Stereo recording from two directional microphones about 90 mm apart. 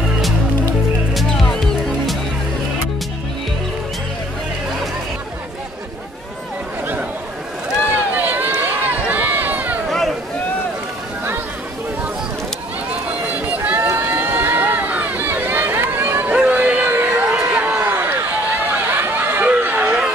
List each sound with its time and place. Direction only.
1.1 s music: centre (ahead or behind)
7.9 s run: 20° right (ahead or behind)
9.8 s a sound: centre (ahead or behind)
13.7 s run: 25° right (ahead or behind)
16.3 s a sound: 15° right (ahead or behind)
17.9 s chatter: 20° right (ahead or behind)